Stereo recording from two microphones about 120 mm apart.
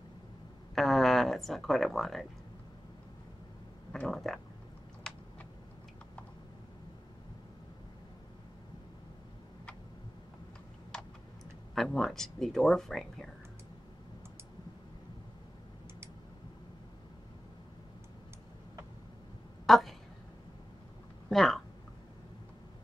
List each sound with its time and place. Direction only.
0.7 s speech: centre (ahead or behind)
3.9 s speech: 5° left (ahead or behind)
11.7 s speech: centre (ahead or behind)
19.6 s a sound: centre (ahead or behind)
21.3 s speech: centre (ahead or behind)